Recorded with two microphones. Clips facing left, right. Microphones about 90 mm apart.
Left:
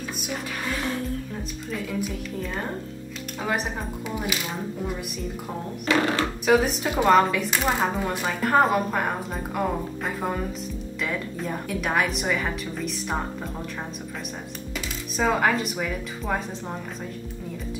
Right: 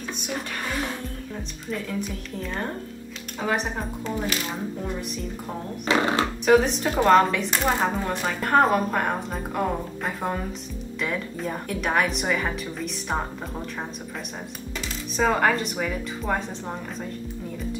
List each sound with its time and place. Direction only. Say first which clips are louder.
1.7 s a woman's voice: even; 5° left (ahead or behind)
5.9 s speech: right 1 dB; 20° right (ahead or behind)
6.4 s a woman's voice: right 2 dB; 5° left (ahead or behind)
15.1 s a woman's voice: right 1 dB; centre (ahead or behind)